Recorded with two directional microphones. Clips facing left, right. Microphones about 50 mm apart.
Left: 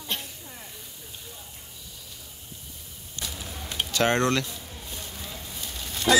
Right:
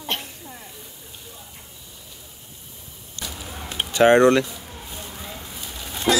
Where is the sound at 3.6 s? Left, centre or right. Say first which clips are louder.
Right 8 dB; centre.